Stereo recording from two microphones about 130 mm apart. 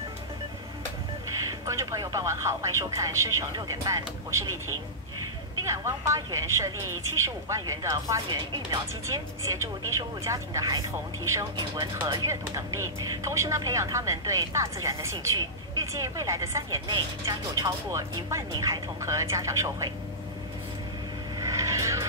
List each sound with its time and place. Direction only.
1.5 s speech: 25° right (ahead or behind)
5.6 s speech: 25° right (ahead or behind)
21.4 s vehicle: 25° right (ahead or behind)